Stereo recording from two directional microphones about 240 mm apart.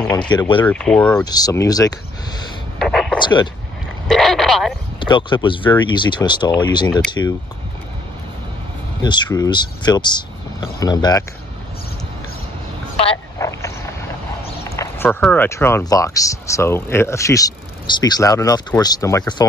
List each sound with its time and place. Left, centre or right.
0.0 s speech: centre
0.3 s speech: centre
0.7 s speech: centre
1.2 s speech: centre
2.8 s a sound: centre
3.2 s speech: centre
4.1 s speech: centre
5.0 s speech: centre
9.0 s speech: centre
13.4 s vehicle: centre
14.6 s speech: centre